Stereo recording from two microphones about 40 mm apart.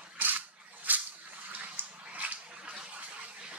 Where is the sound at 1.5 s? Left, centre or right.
Right.